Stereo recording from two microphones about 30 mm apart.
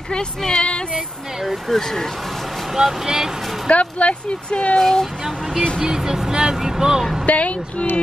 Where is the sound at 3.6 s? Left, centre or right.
Left.